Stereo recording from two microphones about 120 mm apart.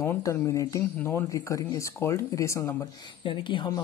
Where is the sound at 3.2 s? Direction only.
45° left (ahead or behind).